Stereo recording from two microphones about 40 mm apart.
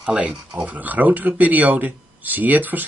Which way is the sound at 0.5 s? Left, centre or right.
Right.